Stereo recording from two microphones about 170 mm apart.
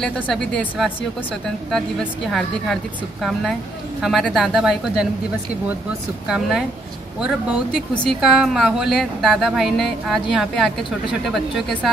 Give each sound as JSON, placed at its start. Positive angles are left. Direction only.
{"t": 0.0, "sound": "speech", "side_deg": 5}
{"t": 6.2, "sound": "speech", "side_deg": -5}